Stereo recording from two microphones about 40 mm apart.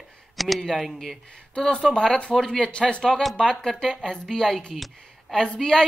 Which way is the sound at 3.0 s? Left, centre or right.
Centre.